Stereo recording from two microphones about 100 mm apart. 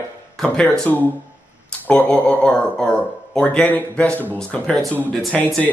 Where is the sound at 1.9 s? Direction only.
15° left (ahead or behind).